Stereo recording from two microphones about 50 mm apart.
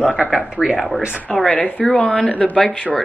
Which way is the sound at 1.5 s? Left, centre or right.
Left.